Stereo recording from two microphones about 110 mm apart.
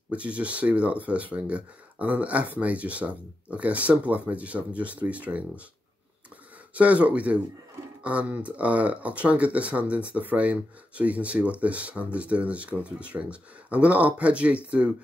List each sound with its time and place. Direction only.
0.1 s speech: 10° right (ahead or behind)
6.7 s speech: 15° right (ahead or behind)